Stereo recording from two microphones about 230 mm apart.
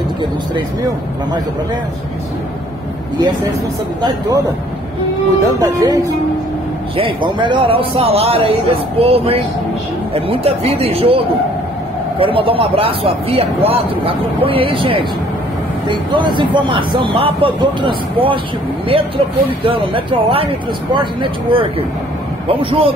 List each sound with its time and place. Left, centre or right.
5.6 s speech: centre